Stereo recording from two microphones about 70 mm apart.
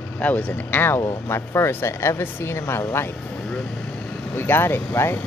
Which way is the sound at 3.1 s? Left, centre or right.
Centre.